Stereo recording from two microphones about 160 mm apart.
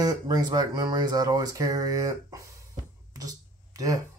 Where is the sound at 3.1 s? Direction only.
20° right (ahead or behind).